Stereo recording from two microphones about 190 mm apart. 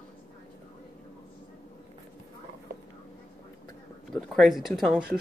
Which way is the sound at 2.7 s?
55° right (ahead or behind).